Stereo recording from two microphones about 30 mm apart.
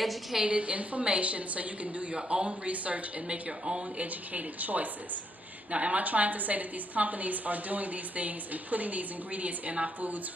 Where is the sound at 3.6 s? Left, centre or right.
Right.